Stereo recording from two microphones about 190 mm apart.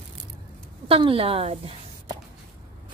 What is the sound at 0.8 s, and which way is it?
Speech, 30° right (ahead or behind).